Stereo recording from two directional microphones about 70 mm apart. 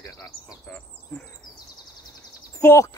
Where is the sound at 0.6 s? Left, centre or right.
Centre.